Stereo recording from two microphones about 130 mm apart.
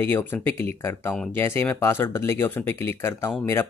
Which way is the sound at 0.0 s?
15° left (ahead or behind).